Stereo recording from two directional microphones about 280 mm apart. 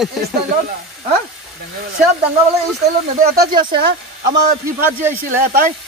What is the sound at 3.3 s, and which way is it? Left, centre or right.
Speech, right.